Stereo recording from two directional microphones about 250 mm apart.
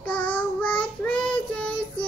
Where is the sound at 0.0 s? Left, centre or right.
Centre.